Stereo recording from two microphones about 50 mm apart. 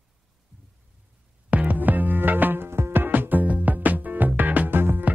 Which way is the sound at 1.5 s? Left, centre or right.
Right.